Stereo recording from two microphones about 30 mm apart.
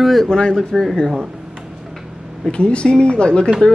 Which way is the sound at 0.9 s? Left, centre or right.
Centre.